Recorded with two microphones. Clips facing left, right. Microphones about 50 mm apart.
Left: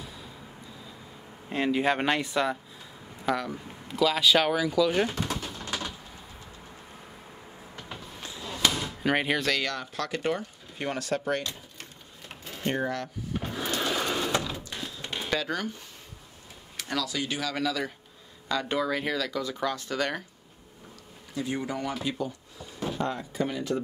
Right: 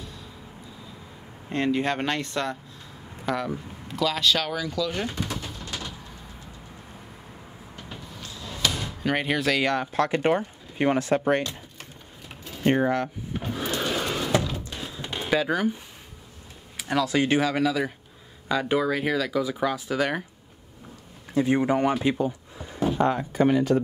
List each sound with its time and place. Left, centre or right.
1.5 s speech: centre
5.6 s a sound: centre
8.2 s a sound: left
8.7 s door: centre
9.6 s speech: right
12.6 s speech: right
13.4 s sewing machine: centre
13.7 s a sound: centre
14.6 s drawer open or close: right
16.9 s speech: right
17.6 s speech: centre
21.3 s speech: right
22.1 s a sound: right
22.9 s speech: right